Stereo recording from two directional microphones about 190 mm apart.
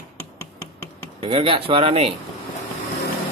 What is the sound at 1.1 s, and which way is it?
Speech, 30° right (ahead or behind).